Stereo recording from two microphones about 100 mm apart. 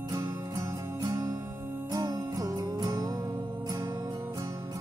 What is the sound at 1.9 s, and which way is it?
Music, 35° right (ahead or behind).